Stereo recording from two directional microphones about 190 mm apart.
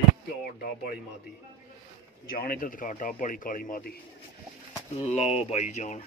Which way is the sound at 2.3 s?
50° left (ahead or behind).